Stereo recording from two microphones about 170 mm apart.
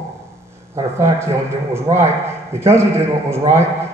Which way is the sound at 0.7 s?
15° right (ahead or behind).